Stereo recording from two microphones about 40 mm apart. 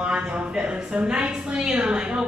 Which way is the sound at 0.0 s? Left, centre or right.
Right.